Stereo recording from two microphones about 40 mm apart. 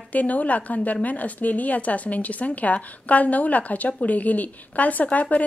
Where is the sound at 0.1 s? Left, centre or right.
Left.